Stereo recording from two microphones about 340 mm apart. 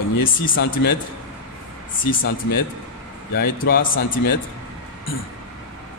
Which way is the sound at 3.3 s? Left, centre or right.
Left.